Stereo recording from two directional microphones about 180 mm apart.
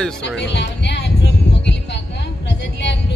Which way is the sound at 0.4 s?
70° left (ahead or behind).